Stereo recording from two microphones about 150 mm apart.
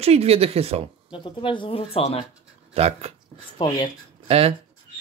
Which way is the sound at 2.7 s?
45° right (ahead or behind).